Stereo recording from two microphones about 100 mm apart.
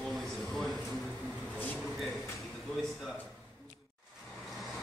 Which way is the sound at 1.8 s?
Centre (ahead or behind).